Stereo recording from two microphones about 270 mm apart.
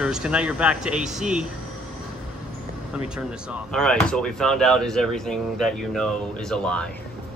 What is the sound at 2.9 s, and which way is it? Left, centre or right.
Speech, centre.